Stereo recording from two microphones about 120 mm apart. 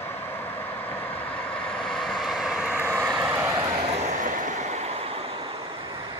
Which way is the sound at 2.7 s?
15° right (ahead or behind).